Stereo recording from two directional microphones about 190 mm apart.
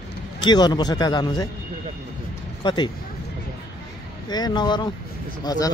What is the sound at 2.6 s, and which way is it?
Speech, 25° left (ahead or behind).